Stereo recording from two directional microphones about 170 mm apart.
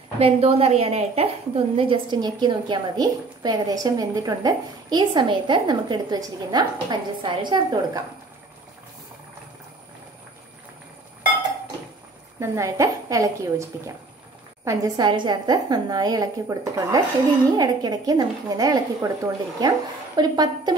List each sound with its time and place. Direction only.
0.2 s a woman's voice: 35° right (ahead or behind)
12.4 s a woman's voice: 15° right (ahead or behind)